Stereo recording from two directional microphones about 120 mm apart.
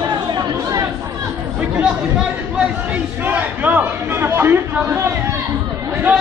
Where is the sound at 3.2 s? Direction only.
15° right (ahead or behind).